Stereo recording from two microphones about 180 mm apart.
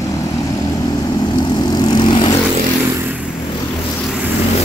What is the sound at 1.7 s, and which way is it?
Vehicle, 25° left (ahead or behind).